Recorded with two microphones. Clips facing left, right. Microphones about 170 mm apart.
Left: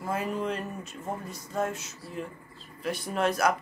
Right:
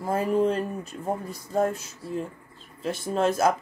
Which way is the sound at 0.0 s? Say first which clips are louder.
Right 7 dB; 35° right (ahead or behind).